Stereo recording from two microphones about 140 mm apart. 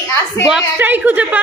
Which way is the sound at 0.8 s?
10° right (ahead or behind).